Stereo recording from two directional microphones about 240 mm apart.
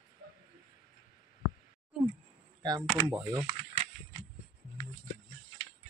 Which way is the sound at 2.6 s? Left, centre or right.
Centre.